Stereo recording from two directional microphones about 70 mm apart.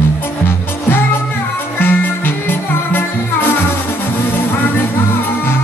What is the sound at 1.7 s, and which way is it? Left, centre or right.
Music, left.